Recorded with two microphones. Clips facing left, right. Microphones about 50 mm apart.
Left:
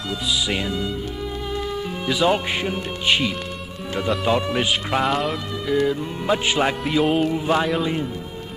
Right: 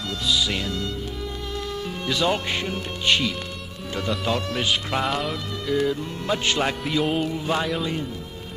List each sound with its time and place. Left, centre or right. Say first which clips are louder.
0.5 s speech: left 3 dB; centre
2.0 s speech: left 4 dB; centre
5.0 s speech: left 4 dB; centre
6.8 s music: left 4 dB; centre
7.2 s speech: left 4 dB; centre